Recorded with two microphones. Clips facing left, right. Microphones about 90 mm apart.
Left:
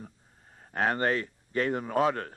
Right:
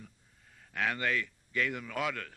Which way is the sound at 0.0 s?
40° left (ahead or behind).